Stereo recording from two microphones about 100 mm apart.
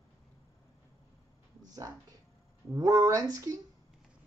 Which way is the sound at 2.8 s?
35° right (ahead or behind).